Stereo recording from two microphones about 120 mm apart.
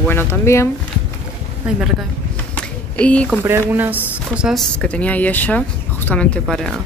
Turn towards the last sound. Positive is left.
turn(degrees=5)  # may be behind; listen again after turning